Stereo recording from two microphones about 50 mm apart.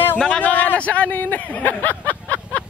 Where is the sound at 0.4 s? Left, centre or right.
Left.